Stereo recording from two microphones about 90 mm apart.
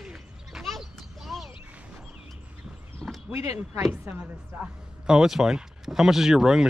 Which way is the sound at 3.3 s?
35° right (ahead or behind).